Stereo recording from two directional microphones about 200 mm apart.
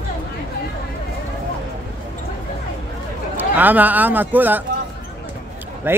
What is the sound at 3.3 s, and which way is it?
Speech, 10° right (ahead or behind).